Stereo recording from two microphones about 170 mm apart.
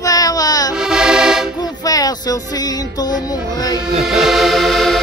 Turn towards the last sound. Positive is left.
turn(degrees=0)  # may be behind; listen again after turning